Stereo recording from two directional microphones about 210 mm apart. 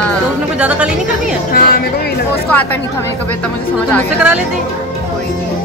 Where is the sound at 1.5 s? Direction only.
45° left (ahead or behind).